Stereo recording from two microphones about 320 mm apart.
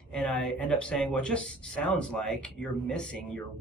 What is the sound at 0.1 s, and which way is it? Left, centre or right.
Speech, centre.